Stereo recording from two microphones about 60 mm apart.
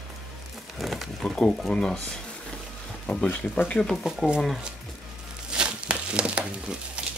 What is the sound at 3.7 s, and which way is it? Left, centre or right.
Speech, centre.